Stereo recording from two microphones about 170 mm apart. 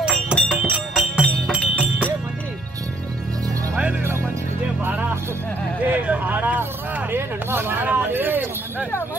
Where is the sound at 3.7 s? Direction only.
5° right (ahead or behind).